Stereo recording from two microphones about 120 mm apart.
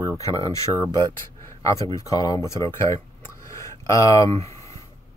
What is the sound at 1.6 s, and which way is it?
Speech, 30° left (ahead or behind).